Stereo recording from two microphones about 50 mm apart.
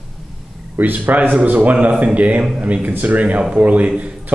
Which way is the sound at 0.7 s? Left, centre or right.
Right.